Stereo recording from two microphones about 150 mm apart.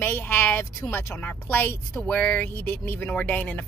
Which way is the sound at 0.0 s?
15° left (ahead or behind).